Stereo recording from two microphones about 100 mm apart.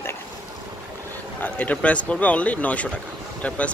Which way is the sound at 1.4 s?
15° left (ahead or behind).